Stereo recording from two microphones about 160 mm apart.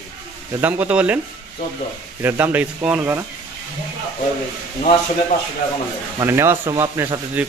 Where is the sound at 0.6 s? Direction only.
10° right (ahead or behind).